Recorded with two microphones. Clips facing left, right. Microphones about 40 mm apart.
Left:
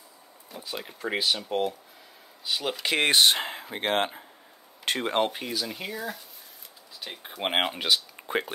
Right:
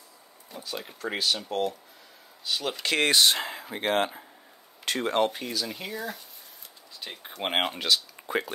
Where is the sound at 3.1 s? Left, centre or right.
Left.